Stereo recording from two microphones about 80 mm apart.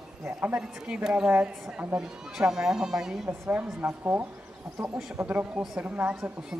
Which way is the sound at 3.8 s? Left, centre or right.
Right.